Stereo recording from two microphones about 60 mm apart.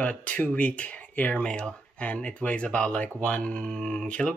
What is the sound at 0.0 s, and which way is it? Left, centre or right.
Speech, left.